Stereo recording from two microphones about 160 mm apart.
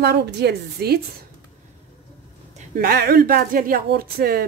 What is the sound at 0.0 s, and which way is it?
Speech, 90° right.